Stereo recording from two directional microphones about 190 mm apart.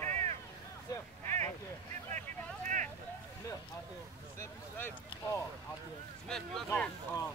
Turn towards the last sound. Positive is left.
turn(degrees=5)  # may be behind; listen again after turning